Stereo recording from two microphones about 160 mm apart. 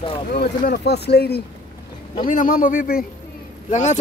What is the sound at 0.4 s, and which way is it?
Speech, 85° left.